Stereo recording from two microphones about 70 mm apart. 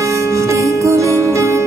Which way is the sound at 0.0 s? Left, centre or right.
Right.